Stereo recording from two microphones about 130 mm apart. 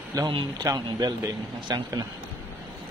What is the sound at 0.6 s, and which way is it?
Speech, 30° right (ahead or behind).